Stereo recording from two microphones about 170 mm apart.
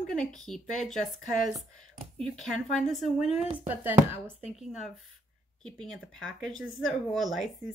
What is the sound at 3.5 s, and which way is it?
Speech, 10° right (ahead or behind).